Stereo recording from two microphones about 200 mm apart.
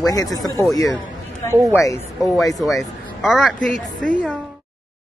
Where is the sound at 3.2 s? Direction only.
Centre (ahead or behind).